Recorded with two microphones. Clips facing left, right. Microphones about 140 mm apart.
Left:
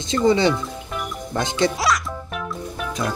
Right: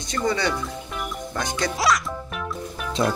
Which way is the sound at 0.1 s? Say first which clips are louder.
Left 7 dB; 25° left (ahead or behind).